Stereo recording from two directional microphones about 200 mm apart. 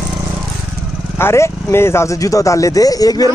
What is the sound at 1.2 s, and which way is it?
Speech, 15° left (ahead or behind).